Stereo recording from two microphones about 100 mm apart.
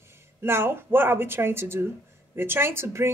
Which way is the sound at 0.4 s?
25° right (ahead or behind).